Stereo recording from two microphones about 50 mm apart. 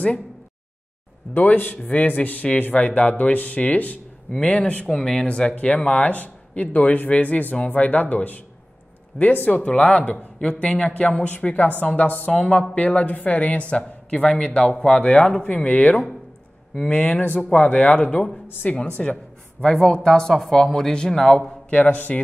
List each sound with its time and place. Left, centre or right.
1.3 s speech: left
4.8 s speech: centre
5.6 s speech: left
16.7 s speech: centre
17.2 s speech: left; by 21.4 s centre
21.4 s speech: left